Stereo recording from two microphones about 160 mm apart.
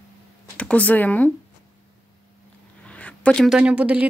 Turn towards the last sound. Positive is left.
turn(degrees=-5)  # may be behind; listen again after turning